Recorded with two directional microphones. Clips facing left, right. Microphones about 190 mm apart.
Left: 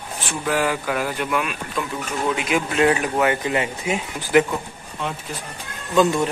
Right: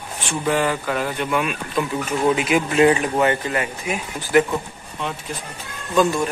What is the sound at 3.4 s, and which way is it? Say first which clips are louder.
Speech: left 2 dB; 20° left (ahead or behind).